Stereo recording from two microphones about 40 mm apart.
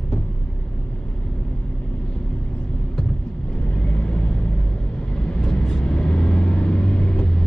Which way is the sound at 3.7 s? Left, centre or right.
Left.